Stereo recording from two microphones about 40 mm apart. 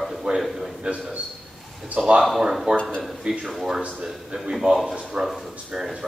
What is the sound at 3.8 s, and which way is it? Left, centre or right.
A man's voice, centre.